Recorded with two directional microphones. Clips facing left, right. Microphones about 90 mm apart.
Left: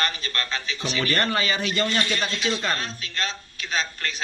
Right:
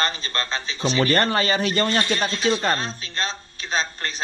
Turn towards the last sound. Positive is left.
turn(degrees=-30)  # may be behind; listen again after turning